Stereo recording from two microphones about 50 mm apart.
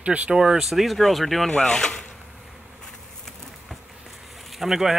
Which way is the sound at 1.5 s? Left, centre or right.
Centre.